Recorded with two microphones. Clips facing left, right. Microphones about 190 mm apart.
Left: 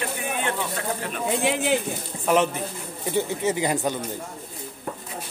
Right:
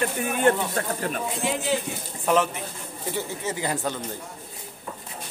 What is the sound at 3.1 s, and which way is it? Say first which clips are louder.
Speech: left 6 dB; 20° left (ahead or behind).